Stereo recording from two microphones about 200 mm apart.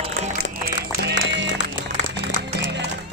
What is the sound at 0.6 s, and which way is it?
Music, 55° right (ahead or behind).